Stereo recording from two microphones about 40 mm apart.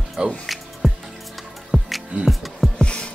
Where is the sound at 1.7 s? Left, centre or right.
Centre.